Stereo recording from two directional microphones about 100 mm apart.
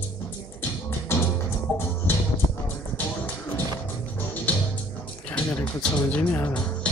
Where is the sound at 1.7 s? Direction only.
20° left (ahead or behind).